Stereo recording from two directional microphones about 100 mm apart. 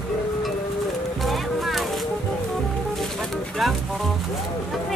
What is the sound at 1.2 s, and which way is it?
Music, centre (ahead or behind).